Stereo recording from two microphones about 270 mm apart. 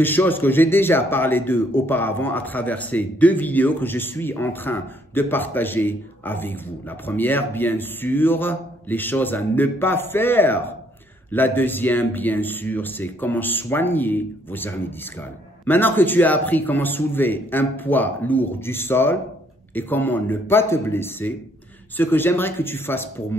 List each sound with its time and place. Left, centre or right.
0.0 s a man's voice: centre